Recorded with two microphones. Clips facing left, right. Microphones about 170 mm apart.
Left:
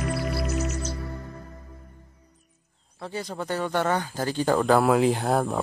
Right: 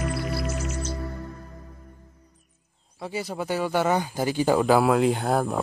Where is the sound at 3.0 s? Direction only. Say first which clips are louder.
Right 2 dB; 10° right (ahead or behind).